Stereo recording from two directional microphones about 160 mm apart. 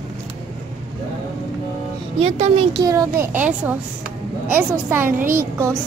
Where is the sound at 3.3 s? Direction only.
10° right (ahead or behind).